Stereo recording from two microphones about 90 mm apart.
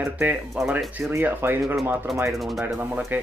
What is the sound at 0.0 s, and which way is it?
Speech, 25° right (ahead or behind).